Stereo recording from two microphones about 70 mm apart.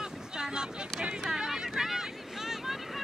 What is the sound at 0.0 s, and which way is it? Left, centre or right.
Vehicle, centre.